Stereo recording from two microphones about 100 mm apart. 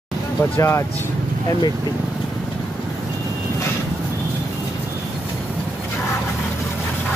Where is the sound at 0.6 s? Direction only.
30° left (ahead or behind).